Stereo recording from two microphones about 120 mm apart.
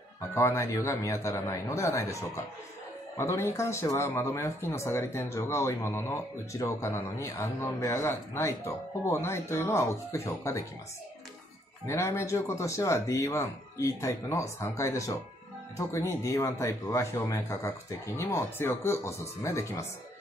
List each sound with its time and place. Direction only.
0.3 s speech: 25° left (ahead or behind)
11.8 s speech: 25° left (ahead or behind)